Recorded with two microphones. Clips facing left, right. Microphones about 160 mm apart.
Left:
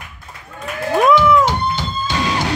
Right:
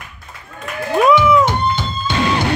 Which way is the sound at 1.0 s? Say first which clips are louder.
Even; centre (ahead or behind).